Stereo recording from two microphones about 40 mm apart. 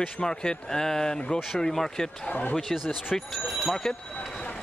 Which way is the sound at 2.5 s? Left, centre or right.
Centre.